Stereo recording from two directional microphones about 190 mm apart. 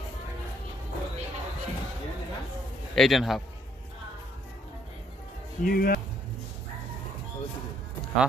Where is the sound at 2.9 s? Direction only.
Centre (ahead or behind).